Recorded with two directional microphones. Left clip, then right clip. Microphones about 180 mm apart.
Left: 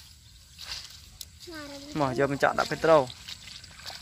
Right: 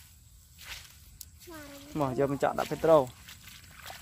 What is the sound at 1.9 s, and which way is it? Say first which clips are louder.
Speech: left 3 dB; 5° right (ahead or behind).